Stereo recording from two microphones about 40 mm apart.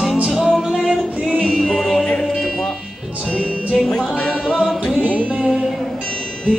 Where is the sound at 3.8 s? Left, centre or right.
Centre.